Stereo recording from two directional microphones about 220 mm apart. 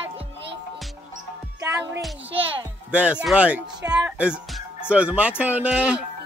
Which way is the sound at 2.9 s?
5° right (ahead or behind).